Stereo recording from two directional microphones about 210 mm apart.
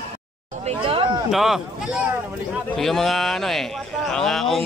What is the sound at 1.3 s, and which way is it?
Speech, centre (ahead or behind).